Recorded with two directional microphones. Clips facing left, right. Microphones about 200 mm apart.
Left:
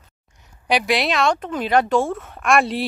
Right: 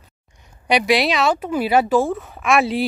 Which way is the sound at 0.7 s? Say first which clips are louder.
Right 3 dB; centre (ahead or behind).